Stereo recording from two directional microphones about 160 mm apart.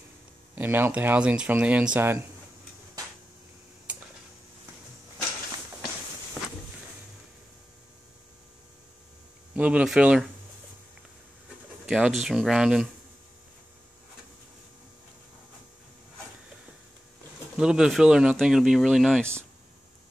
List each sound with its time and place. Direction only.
0.6 s speech: 15° right (ahead or behind)
9.6 s speech: 10° right (ahead or behind)
11.8 s speech: centre (ahead or behind)
17.6 s speech: 5° right (ahead or behind)